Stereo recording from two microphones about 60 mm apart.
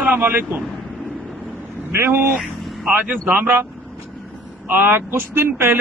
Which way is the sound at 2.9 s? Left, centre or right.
Right.